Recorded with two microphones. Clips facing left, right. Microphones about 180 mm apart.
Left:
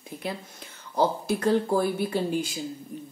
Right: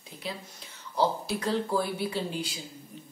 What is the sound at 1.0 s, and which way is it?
Speech, 50° left (ahead or behind).